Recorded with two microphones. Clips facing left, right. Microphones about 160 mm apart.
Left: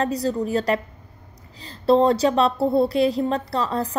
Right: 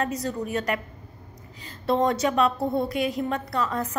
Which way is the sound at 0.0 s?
30° left (ahead or behind).